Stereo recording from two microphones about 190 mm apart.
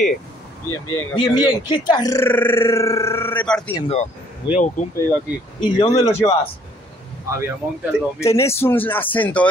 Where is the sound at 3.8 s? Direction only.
30° left (ahead or behind).